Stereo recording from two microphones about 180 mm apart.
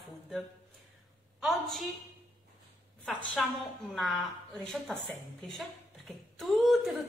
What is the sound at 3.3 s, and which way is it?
Speech, centre (ahead or behind).